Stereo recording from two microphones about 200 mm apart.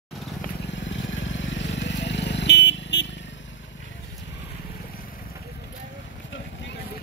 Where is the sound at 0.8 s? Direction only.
70° left (ahead or behind).